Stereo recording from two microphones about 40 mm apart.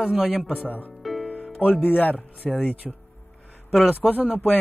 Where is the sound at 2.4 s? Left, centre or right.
Left.